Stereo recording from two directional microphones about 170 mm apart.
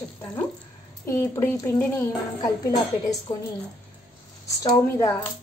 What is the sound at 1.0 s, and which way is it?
A woman's voice, 15° left (ahead or behind).